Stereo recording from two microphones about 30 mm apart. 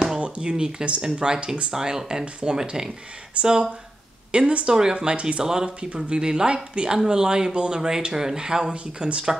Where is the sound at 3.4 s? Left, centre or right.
Right.